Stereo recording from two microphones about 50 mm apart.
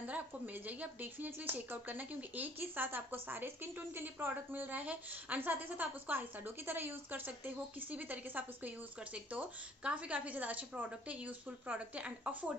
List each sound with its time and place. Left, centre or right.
0.7 s a woman's voice: right